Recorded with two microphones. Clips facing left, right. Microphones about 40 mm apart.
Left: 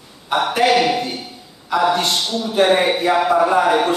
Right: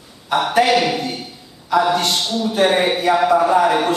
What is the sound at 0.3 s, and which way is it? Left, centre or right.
Speech, centre.